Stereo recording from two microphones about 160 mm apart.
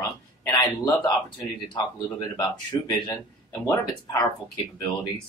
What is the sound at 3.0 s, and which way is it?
Speech, 20° left (ahead or behind).